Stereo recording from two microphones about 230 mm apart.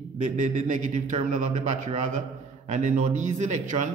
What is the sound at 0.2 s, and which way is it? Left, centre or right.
A man's voice, right.